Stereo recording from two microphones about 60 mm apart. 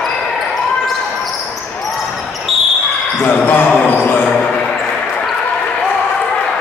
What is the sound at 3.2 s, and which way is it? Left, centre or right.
Speech, left.